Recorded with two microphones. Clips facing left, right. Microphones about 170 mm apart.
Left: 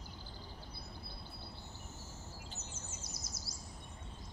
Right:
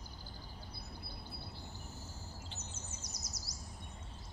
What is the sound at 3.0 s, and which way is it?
Bird vocalization, 25° left (ahead or behind).